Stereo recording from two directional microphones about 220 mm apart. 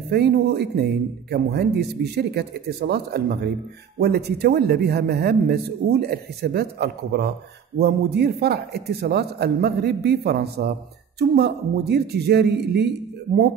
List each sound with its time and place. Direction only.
0.1 s a man's voice: 45° right (ahead or behind)